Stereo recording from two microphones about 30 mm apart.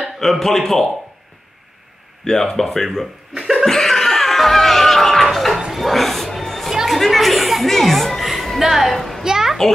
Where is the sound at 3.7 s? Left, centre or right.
Centre.